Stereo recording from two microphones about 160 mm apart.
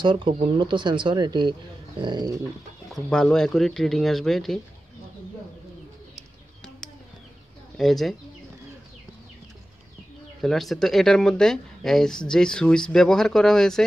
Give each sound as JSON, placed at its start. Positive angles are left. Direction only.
{"t": 0.0, "sound": "speech", "side_deg": -30}
{"t": 2.9, "sound": "speech", "side_deg": 5}
{"t": 7.7, "sound": "speech", "side_deg": 0}
{"t": 10.4, "sound": "speech", "side_deg": 0}